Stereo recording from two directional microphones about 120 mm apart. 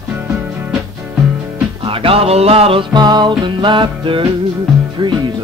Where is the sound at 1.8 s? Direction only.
50° right (ahead or behind).